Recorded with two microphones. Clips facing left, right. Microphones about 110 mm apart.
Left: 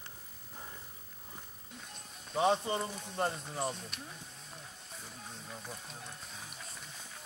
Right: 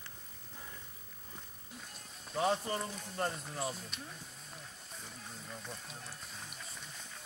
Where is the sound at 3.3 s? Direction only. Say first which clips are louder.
Left 2 dB; centre (ahead or behind).